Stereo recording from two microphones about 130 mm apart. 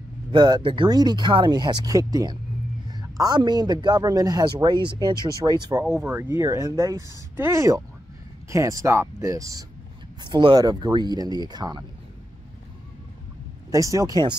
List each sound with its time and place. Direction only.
0.3 s a man's voice: 35° right (ahead or behind)
13.7 s speech: 25° right (ahead or behind)